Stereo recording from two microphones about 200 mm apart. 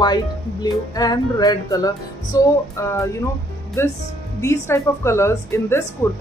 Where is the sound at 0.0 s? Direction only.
20° left (ahead or behind).